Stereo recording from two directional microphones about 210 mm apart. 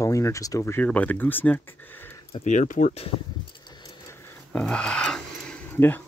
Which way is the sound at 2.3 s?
35° left (ahead or behind).